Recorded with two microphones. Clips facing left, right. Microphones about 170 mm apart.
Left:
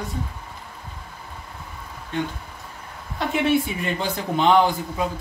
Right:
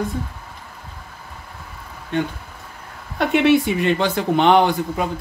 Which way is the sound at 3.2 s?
75° right (ahead or behind).